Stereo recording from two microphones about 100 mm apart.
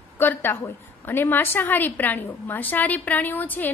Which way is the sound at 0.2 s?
20° left (ahead or behind).